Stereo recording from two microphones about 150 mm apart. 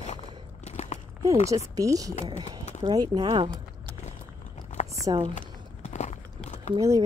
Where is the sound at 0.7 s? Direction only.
50° left (ahead or behind).